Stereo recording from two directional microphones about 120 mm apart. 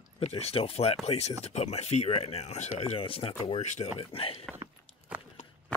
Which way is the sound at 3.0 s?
50° left (ahead or behind).